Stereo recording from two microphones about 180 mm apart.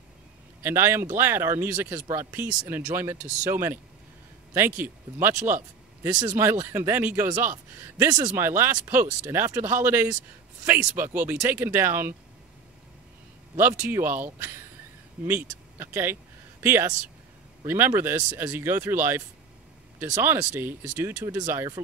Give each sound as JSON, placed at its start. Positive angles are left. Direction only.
{"t": 0.6, "sound": "speech", "side_deg": -15}
{"t": 13.6, "sound": "speech", "side_deg": -10}